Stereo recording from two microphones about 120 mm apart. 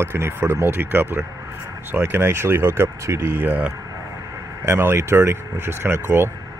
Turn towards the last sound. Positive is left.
turn(degrees=-20)  # may be behind; listen again after turning